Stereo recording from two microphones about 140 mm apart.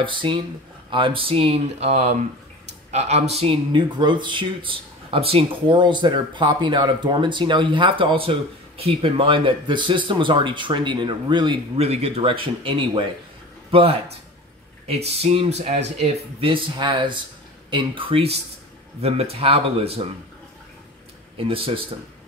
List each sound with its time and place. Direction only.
0.0 s speech: 35° right (ahead or behind)
11.8 s speech: 50° right (ahead or behind)
21.4 s speech: 40° right (ahead or behind)